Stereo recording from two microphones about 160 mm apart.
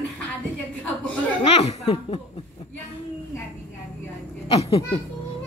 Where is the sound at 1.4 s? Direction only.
40° left (ahead or behind).